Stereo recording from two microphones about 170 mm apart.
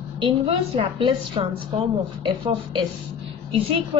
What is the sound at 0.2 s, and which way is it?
A woman's voice, 30° right (ahead or behind).